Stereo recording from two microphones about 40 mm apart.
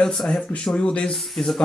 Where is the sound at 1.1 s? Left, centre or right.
Centre.